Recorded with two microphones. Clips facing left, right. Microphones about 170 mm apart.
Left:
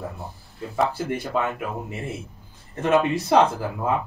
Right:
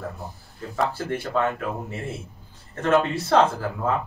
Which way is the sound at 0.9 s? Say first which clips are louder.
Even; 15° left (ahead or behind).